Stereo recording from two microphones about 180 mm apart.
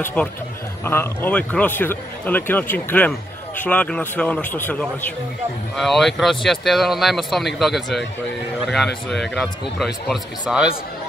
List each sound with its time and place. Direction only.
0.0 s speech: 5° left (ahead or behind)